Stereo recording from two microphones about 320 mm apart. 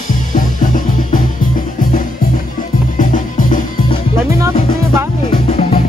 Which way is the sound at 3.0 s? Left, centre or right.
Left.